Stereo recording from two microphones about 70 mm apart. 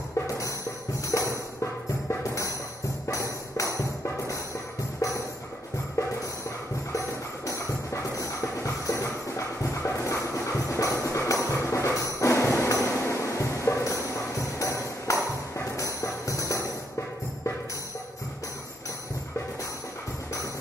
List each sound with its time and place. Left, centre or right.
1.1 s music: left
6.9 s music: left